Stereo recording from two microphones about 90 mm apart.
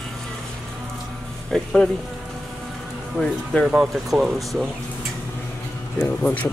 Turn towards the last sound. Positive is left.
turn(degrees=15)  # may be behind; listen again after turning